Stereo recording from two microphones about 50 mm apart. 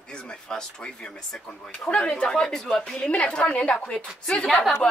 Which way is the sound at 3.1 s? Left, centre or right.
Left.